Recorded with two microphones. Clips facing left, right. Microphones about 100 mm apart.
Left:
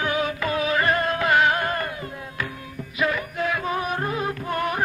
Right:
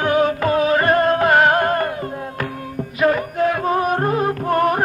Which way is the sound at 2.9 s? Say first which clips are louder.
Right 7 dB; 45° right (ahead or behind).